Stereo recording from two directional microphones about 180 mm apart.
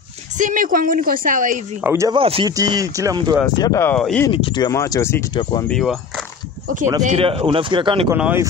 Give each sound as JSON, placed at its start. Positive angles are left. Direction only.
{"t": 0.4, "sound": "a woman's voice", "side_deg": -45}
{"t": 1.8, "sound": "speech", "side_deg": -15}
{"t": 2.1, "sound": "speech", "side_deg": -30}
{"t": 2.5, "sound": "speech", "side_deg": -20}
{"t": 3.4, "sound": "speech", "side_deg": 20}
{"t": 4.3, "sound": "speech", "side_deg": 25}
{"t": 5.3, "sound": "speech", "side_deg": 25}
{"t": 5.7, "sound": "speech", "side_deg": 0}
{"t": 7.2, "sound": "speech", "side_deg": -30}
{"t": 8.1, "sound": "speech", "side_deg": -10}